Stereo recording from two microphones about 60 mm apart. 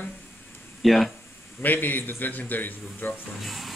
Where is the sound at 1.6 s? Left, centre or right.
Left.